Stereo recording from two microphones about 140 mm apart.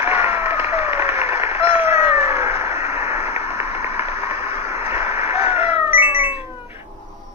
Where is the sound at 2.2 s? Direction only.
15° right (ahead or behind).